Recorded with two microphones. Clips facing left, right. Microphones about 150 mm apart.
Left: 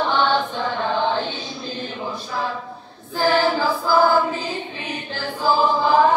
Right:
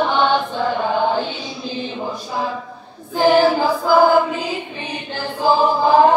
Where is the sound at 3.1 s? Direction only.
15° right (ahead or behind).